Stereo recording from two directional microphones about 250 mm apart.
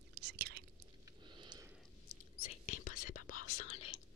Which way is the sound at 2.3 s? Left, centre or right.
Left.